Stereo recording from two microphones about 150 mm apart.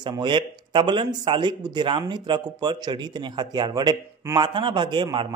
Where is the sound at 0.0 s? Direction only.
30° right (ahead or behind).